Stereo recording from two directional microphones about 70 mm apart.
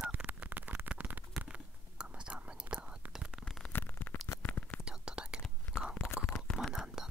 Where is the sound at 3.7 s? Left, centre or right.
Left.